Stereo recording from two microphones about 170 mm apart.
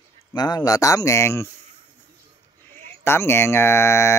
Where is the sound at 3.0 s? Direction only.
15° left (ahead or behind).